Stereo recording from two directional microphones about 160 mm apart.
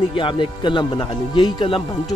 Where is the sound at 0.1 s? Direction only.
30° left (ahead or behind).